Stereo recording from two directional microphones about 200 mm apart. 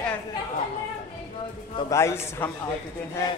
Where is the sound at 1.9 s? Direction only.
15° left (ahead or behind).